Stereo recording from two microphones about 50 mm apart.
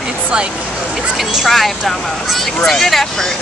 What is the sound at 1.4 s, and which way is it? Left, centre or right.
Speech, centre.